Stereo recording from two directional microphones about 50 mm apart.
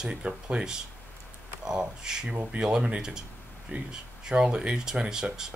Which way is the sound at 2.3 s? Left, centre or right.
Right.